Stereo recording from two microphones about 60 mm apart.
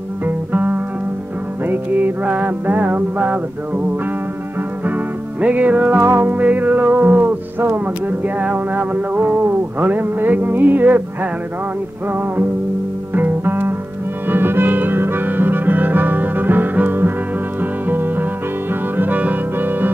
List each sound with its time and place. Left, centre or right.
0.2 s music: right
4.8 s music: right
5.9 s music: right
6.3 s music: right
7.0 s a sound: right
8.4 s music: right
8.7 s a sound: right
12.1 s a sound: right
13.1 s music: right